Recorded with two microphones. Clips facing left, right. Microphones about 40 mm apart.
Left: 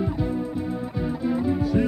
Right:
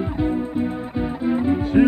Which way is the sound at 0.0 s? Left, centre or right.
Right.